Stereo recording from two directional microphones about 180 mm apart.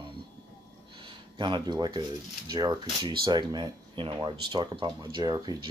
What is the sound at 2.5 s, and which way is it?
Speech, 20° right (ahead or behind).